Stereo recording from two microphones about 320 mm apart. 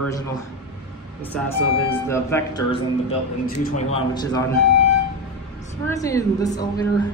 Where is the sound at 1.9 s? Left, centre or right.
Centre.